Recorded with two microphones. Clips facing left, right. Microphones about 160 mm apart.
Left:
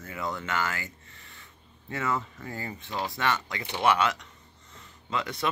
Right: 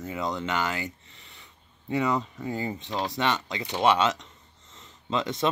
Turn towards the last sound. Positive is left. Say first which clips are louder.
# right 4 dB
turn(degrees=-20)  # may be behind; listen again after turning